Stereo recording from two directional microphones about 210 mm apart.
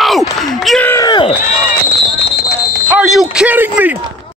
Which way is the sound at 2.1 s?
55° left (ahead or behind).